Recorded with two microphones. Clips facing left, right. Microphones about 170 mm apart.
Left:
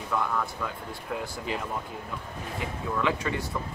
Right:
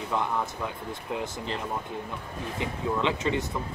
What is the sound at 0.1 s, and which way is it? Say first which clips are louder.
Speech: even; 20° right (ahead or behind).